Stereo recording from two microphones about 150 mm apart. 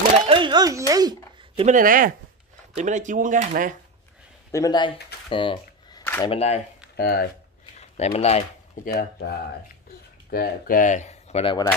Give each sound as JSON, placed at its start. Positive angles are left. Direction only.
{"t": 0.3, "sound": "a sound", "side_deg": -30}
{"t": 1.7, "sound": "speech", "side_deg": -65}
{"t": 2.7, "sound": "speech", "side_deg": -55}
{"t": 4.5, "sound": "speech", "side_deg": 25}
{"t": 5.3, "sound": "a sound", "side_deg": 35}
{"t": 6.2, "sound": "speech", "side_deg": 40}
{"t": 7.0, "sound": "speech", "side_deg": 90}
{"t": 8.0, "sound": "speech", "side_deg": 45}
{"t": 8.8, "sound": "speech", "side_deg": 90}
{"t": 10.3, "sound": "speech", "side_deg": 80}
{"t": 11.4, "sound": "speech", "side_deg": 30}